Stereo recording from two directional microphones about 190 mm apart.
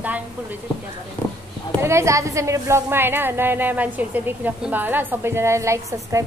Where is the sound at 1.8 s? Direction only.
15° right (ahead or behind).